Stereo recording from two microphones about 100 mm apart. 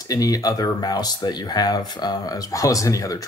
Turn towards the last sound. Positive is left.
turn(degrees=35)  # may be behind; listen again after turning